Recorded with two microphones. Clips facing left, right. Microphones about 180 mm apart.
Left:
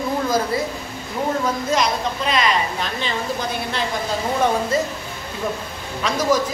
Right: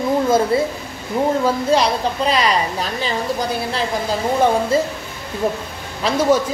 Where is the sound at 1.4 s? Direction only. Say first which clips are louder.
Right 4 dB; 30° right (ahead or behind).